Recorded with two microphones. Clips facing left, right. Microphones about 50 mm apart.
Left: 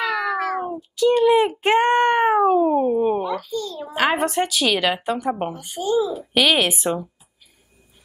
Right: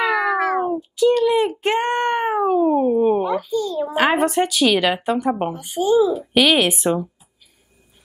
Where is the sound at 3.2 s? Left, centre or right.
Centre.